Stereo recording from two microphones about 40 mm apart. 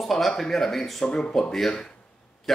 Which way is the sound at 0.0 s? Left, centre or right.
Centre.